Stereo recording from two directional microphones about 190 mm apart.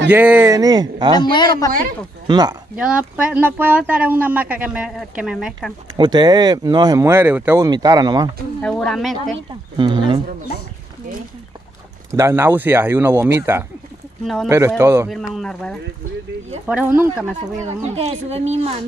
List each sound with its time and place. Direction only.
0.1 s speech: 10° right (ahead or behind)
1.1 s a man's voice: 25° left (ahead or behind)
1.7 s speech: 50° right (ahead or behind)
2.2 s speech: 20° right (ahead or behind)
2.7 s speech: 5° right (ahead or behind)
5.9 s speech: 20° right (ahead or behind)
8.5 s speech: 5° left (ahead or behind)
9.8 s speech: 25° right (ahead or behind)
12.1 s speech: 15° right (ahead or behind)
14.2 s speech: centre (ahead or behind)
14.8 s speech: 15° right (ahead or behind)
15.3 s speech: 5° left (ahead or behind)
16.6 s speech: 10° right (ahead or behind)
17.9 s speech: 35° right (ahead or behind)